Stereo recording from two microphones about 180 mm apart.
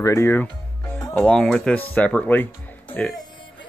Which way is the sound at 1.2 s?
5° left (ahead or behind).